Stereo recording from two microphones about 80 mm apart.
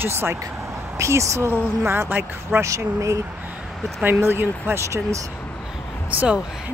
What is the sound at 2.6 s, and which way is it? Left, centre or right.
Speech, right.